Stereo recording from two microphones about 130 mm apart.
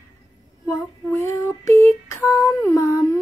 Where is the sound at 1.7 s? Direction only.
25° left (ahead or behind).